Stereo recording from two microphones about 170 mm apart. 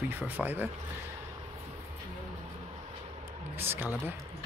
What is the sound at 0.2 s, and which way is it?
Speech, 10° right (ahead or behind).